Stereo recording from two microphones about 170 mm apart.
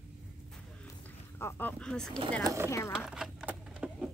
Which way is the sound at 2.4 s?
20° right (ahead or behind).